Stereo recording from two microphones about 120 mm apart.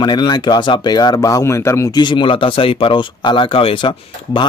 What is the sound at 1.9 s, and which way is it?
Speech, 40° left (ahead or behind).